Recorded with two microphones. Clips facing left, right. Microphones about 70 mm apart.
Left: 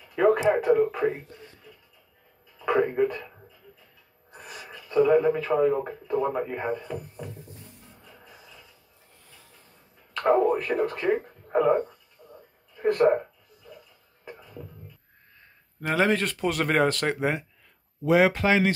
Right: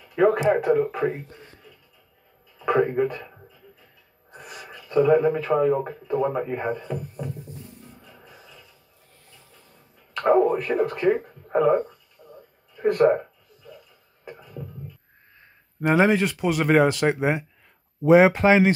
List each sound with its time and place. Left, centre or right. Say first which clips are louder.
0.1 s speech: right 2 dB; centre
1.3 s a sound: right 1 dB; right
2.6 s speech: right 2 dB; centre
4.5 s speech: right 1 dB; centre
10.1 s speech: right 2 dB; centre
12.2 s a sound: right 2 dB; right
12.8 s speech: right 2 dB; centre
15.8 s speech: right 5 dB; centre